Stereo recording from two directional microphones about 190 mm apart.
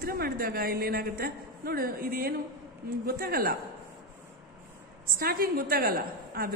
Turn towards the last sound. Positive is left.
turn(degrees=-50)  # may be behind; listen again after turning